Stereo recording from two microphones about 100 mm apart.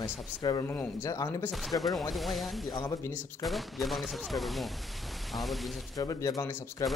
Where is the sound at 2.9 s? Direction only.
25° left (ahead or behind).